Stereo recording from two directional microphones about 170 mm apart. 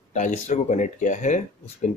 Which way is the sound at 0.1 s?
45° left (ahead or behind).